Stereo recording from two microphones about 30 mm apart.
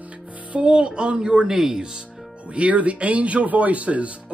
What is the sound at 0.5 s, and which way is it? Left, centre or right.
Speech, right.